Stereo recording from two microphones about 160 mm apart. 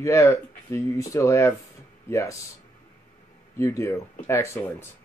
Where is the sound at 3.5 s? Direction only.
15° left (ahead or behind).